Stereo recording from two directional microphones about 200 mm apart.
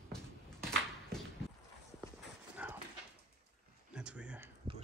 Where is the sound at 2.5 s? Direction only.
10° right (ahead or behind).